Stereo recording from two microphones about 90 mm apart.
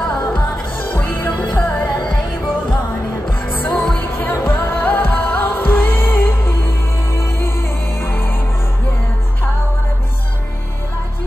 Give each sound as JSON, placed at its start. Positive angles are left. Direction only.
{"t": 0.3, "sound": "music", "side_deg": 20}
{"t": 3.7, "sound": "music", "side_deg": 5}
{"t": 4.2, "sound": "music", "side_deg": 25}